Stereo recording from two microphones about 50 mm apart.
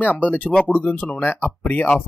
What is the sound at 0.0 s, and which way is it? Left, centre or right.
Speech, left.